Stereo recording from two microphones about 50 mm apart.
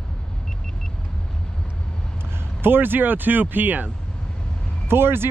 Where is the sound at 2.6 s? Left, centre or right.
Right.